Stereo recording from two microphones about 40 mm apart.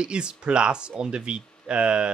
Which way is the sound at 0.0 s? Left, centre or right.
Right.